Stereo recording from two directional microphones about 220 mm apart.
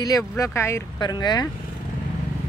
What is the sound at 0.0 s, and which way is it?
Speech, 15° left (ahead or behind).